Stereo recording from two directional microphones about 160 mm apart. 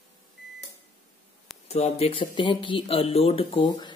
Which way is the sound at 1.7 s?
40° left (ahead or behind).